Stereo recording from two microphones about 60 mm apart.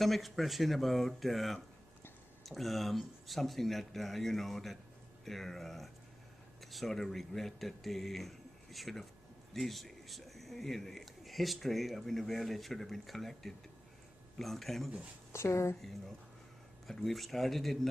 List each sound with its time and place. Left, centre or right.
0.0 s a man's voice: centre
15.3 s speech: left
16.8 s speech: centre